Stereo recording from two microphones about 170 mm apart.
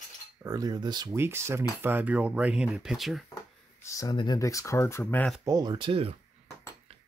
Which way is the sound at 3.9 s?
20° left (ahead or behind).